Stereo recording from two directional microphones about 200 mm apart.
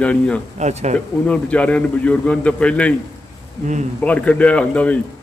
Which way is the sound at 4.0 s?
5° left (ahead or behind).